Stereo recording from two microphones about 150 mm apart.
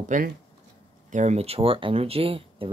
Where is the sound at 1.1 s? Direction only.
50° right (ahead or behind).